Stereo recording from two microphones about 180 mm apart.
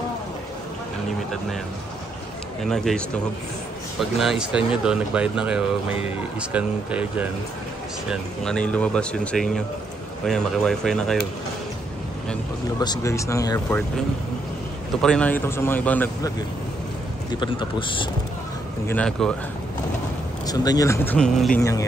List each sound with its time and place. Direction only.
2.6 s speech: centre (ahead or behind)
4.0 s speech: centre (ahead or behind)
8.1 s speech: 5° left (ahead or behind)
12.7 s speech: 20° left (ahead or behind)
15.0 s speech: 5° left (ahead or behind)
17.3 s speech: 25° left (ahead or behind)
18.9 s speech: 5° left (ahead or behind)
20.4 s speech: 20° left (ahead or behind)
21.5 s speech: 15° left (ahead or behind)